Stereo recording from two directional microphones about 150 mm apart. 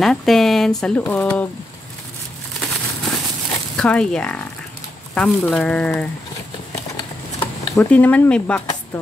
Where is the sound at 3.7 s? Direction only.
5° left (ahead or behind).